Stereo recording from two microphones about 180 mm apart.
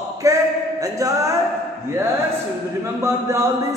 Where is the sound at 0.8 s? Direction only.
20° right (ahead or behind).